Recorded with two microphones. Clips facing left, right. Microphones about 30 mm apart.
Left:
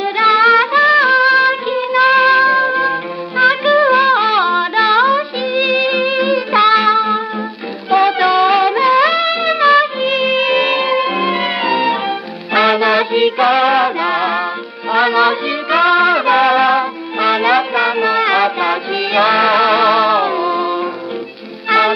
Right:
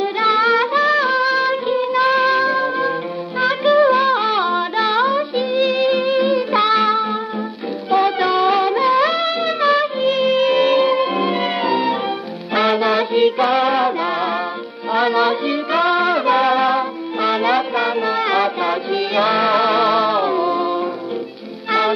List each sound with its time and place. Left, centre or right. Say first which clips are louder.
0.0 s music: left 5 dB; centre
2.5 s music: left 5 dB; centre
3.3 s music: left 3 dB; left
7.9 s music: left 4 dB; left